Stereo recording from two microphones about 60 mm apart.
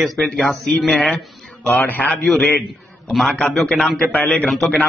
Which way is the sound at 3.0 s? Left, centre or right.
Centre.